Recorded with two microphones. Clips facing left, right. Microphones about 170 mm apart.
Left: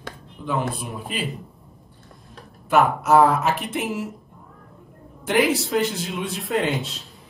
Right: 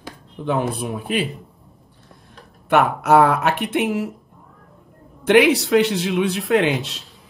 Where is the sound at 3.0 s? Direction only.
65° right (ahead or behind).